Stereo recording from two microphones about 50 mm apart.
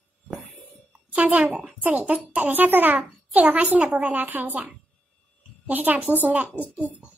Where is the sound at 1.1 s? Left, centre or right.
Right.